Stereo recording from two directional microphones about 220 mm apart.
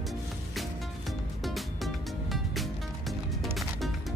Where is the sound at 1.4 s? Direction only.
Centre (ahead or behind).